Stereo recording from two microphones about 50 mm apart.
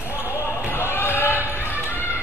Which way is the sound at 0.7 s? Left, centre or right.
Left.